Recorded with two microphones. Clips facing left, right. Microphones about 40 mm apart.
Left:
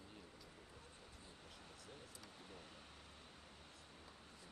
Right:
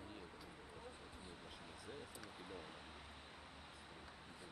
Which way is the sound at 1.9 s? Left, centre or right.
Centre.